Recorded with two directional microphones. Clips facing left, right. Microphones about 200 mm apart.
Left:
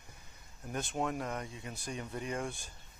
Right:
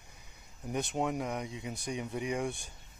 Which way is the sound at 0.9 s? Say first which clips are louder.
Right 1 dB; 15° right (ahead or behind).